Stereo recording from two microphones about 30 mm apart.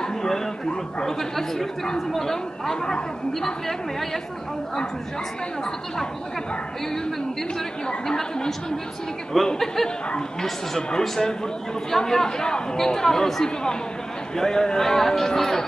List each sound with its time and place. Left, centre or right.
0.0 s a sound: left
1.0 s speech: centre
8.1 s speech: left
9.3 s speech: centre
10.9 s speech: left